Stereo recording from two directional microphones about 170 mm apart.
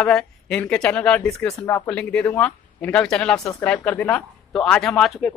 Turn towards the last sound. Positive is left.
turn(degrees=0)  # may be behind; listen again after turning